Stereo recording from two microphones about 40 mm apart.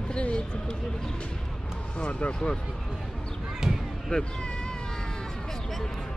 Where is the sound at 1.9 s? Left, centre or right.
Left.